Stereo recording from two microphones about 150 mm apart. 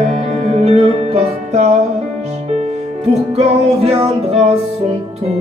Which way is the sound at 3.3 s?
45° right (ahead or behind).